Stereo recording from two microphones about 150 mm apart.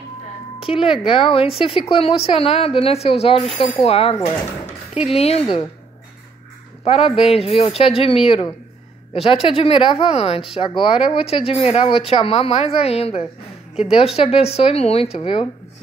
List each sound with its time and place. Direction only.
0.6 s speech: 35° left (ahead or behind)
6.8 s speech: 40° left (ahead or behind)